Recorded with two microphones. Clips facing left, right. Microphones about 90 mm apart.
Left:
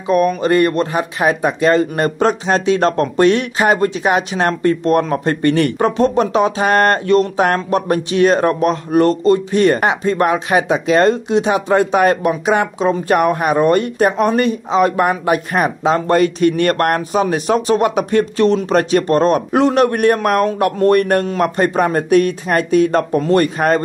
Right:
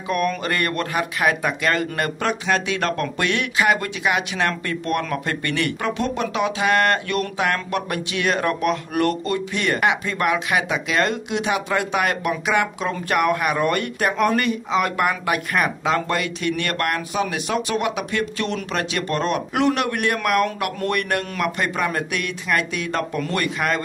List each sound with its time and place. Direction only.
0.1 s speech: 25° left (ahead or behind)